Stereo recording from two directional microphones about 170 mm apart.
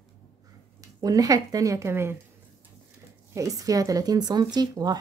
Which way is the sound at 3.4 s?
20° right (ahead or behind).